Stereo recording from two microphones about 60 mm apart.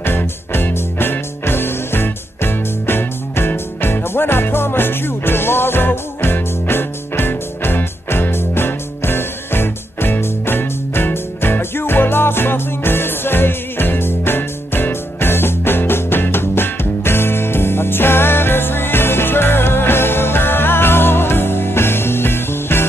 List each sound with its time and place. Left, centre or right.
0.0 s music: left